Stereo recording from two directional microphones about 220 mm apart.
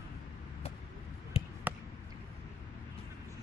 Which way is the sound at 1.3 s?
25° left (ahead or behind).